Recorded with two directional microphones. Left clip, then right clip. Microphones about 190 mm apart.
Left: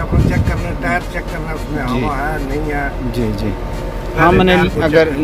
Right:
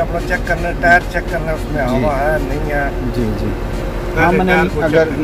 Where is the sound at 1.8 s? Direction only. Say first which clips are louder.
Right 4 dB; centre (ahead or behind).